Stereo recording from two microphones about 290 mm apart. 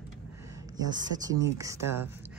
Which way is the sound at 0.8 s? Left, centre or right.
Centre.